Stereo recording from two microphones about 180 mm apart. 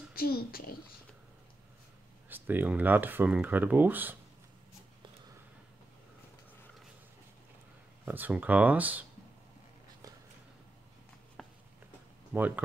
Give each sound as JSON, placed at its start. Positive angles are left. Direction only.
{"t": 0.1, "sound": "a child's voice", "side_deg": 60}
{"t": 2.2, "sound": "speech", "side_deg": -10}
{"t": 8.0, "sound": "speech", "side_deg": -10}
{"t": 11.4, "sound": "a sound", "side_deg": 0}
{"t": 12.4, "sound": "speech", "side_deg": -10}